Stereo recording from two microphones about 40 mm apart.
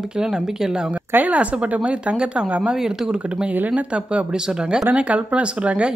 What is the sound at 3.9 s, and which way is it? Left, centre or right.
Speech, right.